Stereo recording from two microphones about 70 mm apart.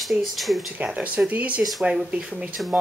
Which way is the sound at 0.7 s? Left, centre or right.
Centre.